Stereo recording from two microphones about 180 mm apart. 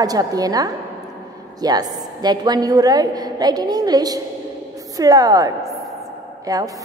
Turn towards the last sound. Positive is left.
turn(degrees=-20)  # may be behind; listen again after turning